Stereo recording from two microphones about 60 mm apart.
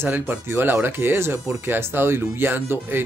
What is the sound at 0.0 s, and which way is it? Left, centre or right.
Speech, right.